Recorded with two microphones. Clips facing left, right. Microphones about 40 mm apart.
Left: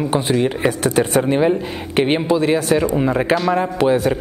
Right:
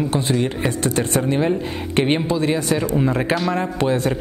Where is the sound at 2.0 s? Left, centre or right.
Centre.